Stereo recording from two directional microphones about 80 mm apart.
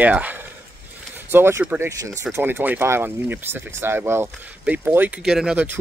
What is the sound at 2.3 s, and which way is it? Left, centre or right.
Speech, right.